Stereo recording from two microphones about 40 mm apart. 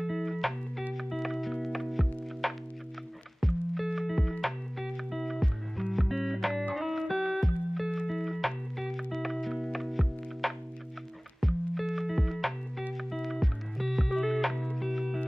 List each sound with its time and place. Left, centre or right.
0.0 s music: centre